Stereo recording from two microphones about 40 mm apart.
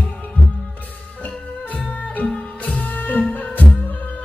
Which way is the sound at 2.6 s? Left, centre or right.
Left.